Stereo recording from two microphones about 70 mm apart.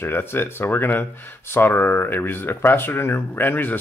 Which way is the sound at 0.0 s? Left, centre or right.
Left.